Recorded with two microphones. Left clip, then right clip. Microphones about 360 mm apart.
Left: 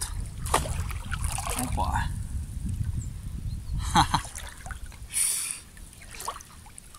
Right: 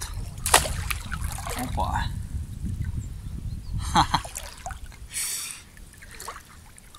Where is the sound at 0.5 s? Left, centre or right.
Right.